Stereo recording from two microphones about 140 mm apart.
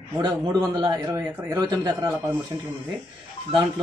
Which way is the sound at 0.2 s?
30° right (ahead or behind).